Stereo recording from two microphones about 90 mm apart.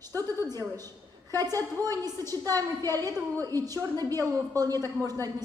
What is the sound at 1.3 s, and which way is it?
A woman's voice, 45° right (ahead or behind).